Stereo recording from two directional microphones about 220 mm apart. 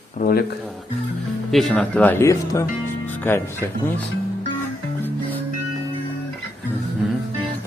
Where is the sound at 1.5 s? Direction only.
Centre (ahead or behind).